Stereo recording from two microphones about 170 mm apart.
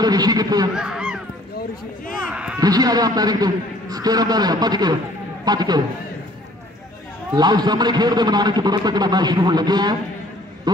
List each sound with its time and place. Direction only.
0.0 s a man's voice: 25° right (ahead or behind)
0.7 s a sound: 5° right (ahead or behind)
2.6 s a man's voice: 25° right (ahead or behind)
7.3 s a man's voice: 25° right (ahead or behind)